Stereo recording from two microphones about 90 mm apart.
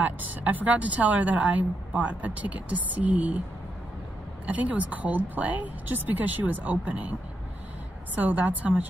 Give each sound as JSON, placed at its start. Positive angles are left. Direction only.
{"t": 0.0, "sound": "a woman's voice", "side_deg": -20}
{"t": 4.5, "sound": "a woman's voice", "side_deg": -15}